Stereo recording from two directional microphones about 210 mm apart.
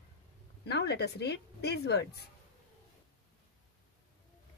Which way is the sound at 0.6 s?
55° left (ahead or behind).